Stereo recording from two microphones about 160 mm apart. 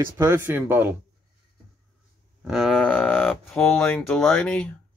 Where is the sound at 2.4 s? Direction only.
Centre (ahead or behind).